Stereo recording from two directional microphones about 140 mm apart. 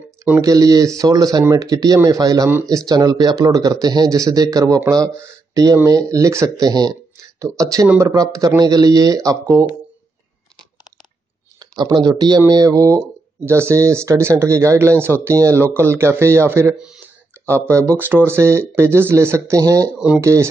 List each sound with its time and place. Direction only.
0.2 s speech: 20° right (ahead or behind)
11.6 s speech: 30° right (ahead or behind)